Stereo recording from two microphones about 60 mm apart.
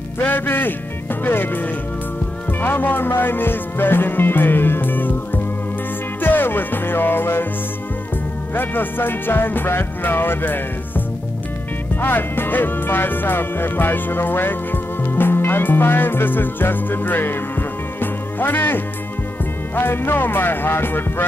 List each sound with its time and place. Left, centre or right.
0.2 s music: left
8.5 s music: left
12.0 s music: left